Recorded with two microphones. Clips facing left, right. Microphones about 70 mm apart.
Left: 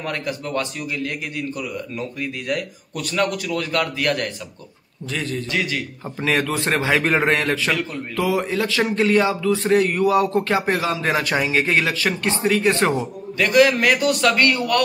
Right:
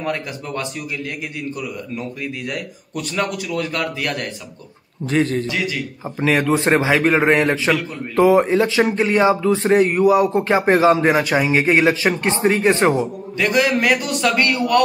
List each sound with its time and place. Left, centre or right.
0.0 s a man's voice: centre
5.0 s a man's voice: right
5.5 s a man's voice: centre
6.5 s speech: right
6.9 s a man's voice: centre
7.2 s speech: centre
12.7 s a man's voice: centre